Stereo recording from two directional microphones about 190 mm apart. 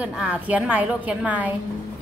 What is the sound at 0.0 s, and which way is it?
A woman's voice, 5° right (ahead or behind).